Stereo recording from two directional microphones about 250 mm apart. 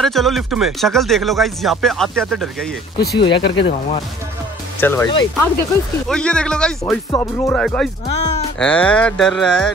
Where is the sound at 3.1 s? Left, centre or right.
Centre.